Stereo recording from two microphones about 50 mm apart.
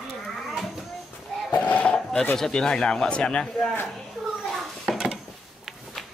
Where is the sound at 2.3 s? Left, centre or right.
Centre.